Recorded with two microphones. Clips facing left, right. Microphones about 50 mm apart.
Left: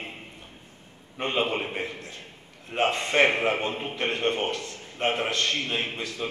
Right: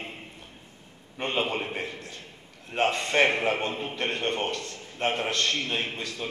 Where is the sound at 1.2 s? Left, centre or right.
Left.